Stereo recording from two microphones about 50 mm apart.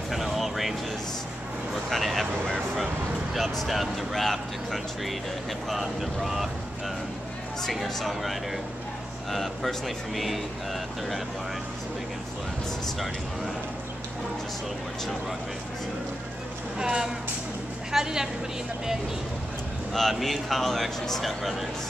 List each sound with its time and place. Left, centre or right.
0.1 s music: centre
1.9 s vehicle: centre
3.3 s speech: centre
7.6 s speech: centre
16.7 s a woman's voice: centre
19.9 s speech: centre